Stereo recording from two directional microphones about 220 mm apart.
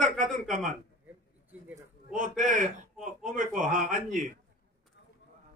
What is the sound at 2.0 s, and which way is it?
A man's voice, 35° right (ahead or behind).